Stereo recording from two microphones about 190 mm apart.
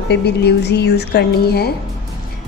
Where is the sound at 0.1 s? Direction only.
60° left (ahead or behind).